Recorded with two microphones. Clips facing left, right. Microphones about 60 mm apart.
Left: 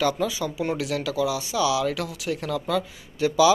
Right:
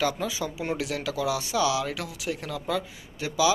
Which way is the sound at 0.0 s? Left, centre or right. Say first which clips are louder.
Left 3 dB; centre.